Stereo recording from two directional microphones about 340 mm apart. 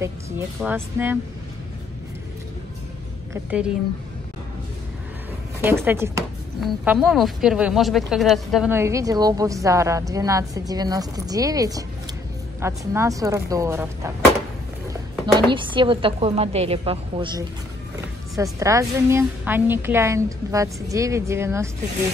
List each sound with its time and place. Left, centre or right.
0.0 s speech: centre
3.4 s a woman's voice: centre
5.6 s speech: centre
14.9 s a sound: centre
15.5 s speech: centre